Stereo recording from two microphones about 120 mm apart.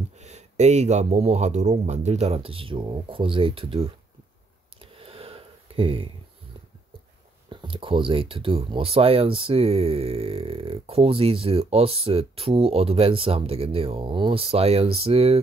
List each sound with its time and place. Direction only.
0.2 s speech: 70° right (ahead or behind); by 3.9 s 50° right (ahead or behind)
4.7 s a sound: 50° right (ahead or behind)
7.4 s speech: 45° right (ahead or behind)